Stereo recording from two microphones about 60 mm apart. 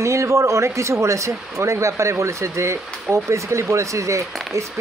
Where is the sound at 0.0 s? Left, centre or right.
Right.